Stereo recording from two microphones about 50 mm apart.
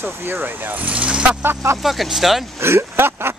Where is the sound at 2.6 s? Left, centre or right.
Right.